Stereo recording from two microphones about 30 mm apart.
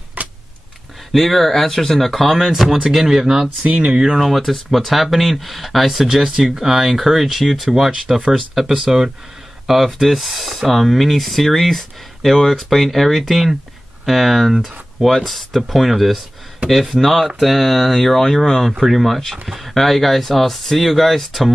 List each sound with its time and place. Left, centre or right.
0.2 s vehicle: right
1.1 s speech: centre
3.6 s speech: right
3.9 s speech: right
4.4 s speech: centre
6.3 s speech: centre
9.7 s speech: centre
15.1 s speech: centre